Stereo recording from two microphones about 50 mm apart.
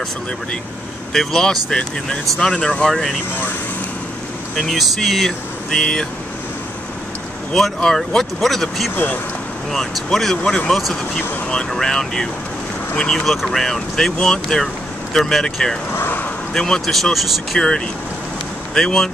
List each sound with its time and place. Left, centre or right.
1.1 s speech: centre
2.9 s speech: centre
4.6 s speech: centre
7.5 s speech: centre
8.9 s speech: left
10.7 s speech: centre
16.0 s a sound: left
16.5 s speech: centre
17.6 s speech: centre